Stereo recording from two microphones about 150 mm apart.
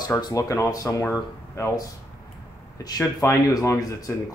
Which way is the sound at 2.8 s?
25° left (ahead or behind).